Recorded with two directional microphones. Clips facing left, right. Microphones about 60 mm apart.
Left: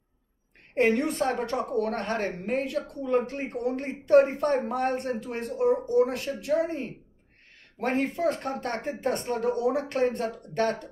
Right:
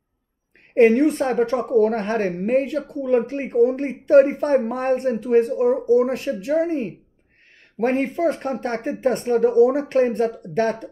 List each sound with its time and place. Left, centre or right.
0.7 s a woman's voice: right
8.5 s a woman's voice: right